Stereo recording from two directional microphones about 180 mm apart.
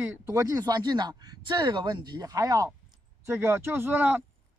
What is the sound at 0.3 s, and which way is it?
Speech, 20° right (ahead or behind).